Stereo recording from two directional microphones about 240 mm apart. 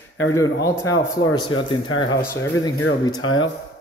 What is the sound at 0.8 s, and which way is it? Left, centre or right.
Speech, centre.